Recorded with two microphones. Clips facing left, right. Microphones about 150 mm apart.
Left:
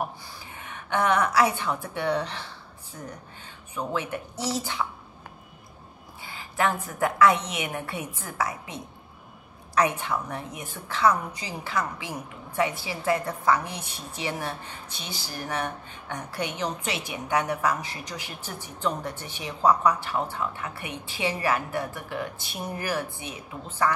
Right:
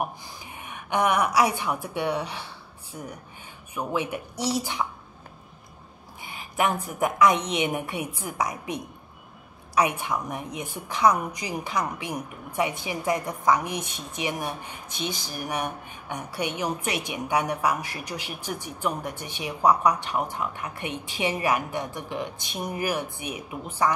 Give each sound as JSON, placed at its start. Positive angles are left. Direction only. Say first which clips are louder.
{"t": 0.6, "sound": "a woman's voice", "louder": "right 1 dB", "side_deg": -15}
{"t": 6.2, "sound": "a woman's voice", "louder": "right 1 dB", "side_deg": -15}